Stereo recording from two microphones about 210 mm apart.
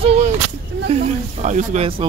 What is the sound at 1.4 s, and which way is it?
Speech, 35° right (ahead or behind).